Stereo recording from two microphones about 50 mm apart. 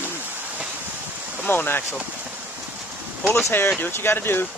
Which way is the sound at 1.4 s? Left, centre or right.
Left.